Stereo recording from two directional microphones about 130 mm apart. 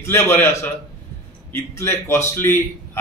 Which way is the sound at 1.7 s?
20° left (ahead or behind).